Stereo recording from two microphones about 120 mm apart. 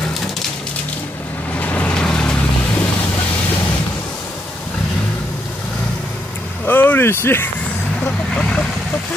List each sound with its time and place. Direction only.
1.6 s vehicle: 10° left (ahead or behind)
6.6 s vehicle: 15° left (ahead or behind)